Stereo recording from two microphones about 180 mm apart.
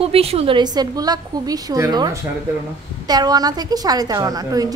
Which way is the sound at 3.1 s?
20° right (ahead or behind).